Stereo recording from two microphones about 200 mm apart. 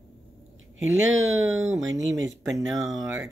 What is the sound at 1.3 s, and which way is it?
Speech, centre (ahead or behind).